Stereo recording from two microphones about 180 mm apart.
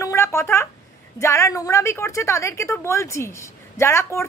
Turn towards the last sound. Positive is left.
turn(degrees=15)  # may be behind; listen again after turning